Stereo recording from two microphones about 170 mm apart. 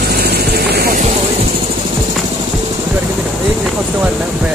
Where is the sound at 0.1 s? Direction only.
70° right (ahead or behind).